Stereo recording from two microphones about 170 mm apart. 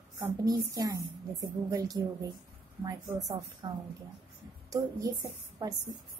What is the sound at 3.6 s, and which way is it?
A woman's voice, 25° right (ahead or behind).